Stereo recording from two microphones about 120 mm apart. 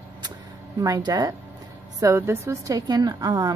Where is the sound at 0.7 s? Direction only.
30° right (ahead or behind).